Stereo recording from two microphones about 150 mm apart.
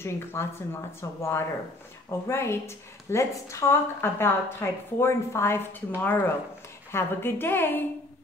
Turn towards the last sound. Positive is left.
turn(degrees=15)  # may be behind; listen again after turning